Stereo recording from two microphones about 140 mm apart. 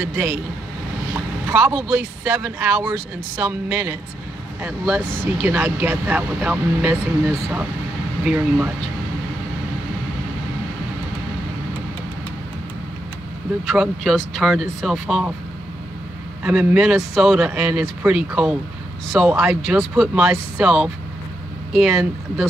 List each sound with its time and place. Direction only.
0.1 s speech: 15° right (ahead or behind)
4.6 s speech: centre (ahead or behind)
5.4 s speech: 20° right (ahead or behind)
8.2 s speech: 5° right (ahead or behind)
13.7 s speech: centre (ahead or behind)
16.4 s speech: 5° right (ahead or behind)